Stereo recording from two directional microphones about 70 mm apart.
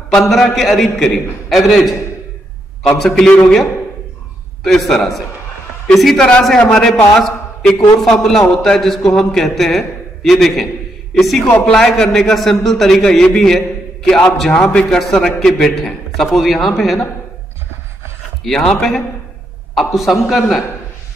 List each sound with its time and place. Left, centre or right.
0.3 s a man's voice: centre
3.0 s a man's voice: centre
4.6 s a man's voice: centre
18.4 s a man's voice: centre